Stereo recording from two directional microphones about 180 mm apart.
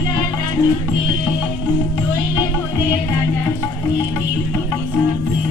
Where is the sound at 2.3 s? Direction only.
20° left (ahead or behind).